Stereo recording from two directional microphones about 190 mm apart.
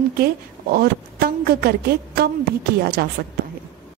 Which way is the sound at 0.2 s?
55° right (ahead or behind).